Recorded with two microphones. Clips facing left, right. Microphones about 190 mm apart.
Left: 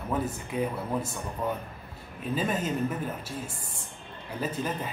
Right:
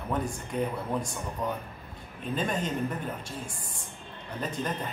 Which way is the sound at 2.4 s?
5° left (ahead or behind).